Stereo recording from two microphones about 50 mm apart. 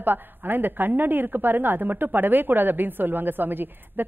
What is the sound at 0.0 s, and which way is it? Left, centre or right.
A woman's voice, right.